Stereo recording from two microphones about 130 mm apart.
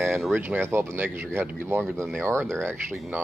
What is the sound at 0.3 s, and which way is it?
Speech, 15° right (ahead or behind).